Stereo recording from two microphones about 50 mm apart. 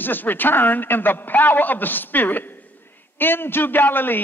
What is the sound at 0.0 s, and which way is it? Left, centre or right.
A man's voice, left.